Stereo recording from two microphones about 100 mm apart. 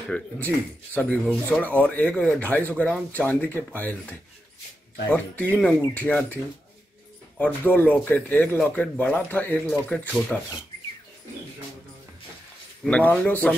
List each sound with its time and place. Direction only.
0.1 s speech: 15° left (ahead or behind)
1.1 s speech: 5° right (ahead or behind)
1.5 s speech: 15° left (ahead or behind)
7.3 s speech: 15° left (ahead or behind)
12.8 s speech: 15° left (ahead or behind)